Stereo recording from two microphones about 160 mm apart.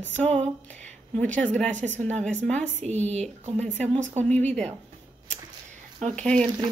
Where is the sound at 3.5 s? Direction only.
10° left (ahead or behind).